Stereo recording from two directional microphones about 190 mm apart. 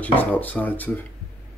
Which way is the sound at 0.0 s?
10° left (ahead or behind).